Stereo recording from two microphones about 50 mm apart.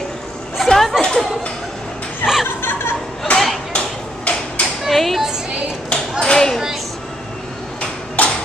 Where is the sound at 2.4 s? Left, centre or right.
Left.